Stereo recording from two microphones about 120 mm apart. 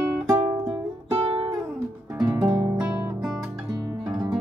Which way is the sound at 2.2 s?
30° right (ahead or behind).